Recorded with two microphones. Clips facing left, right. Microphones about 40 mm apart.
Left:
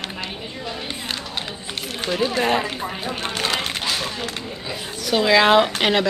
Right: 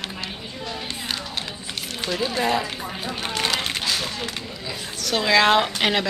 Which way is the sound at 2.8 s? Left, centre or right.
Centre.